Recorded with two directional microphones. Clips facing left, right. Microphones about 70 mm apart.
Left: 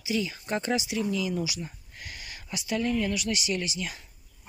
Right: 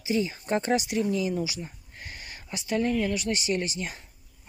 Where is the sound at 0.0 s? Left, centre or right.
Right.